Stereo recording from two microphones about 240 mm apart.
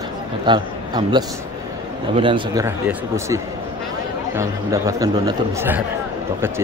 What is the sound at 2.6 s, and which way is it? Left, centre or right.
Speech, centre.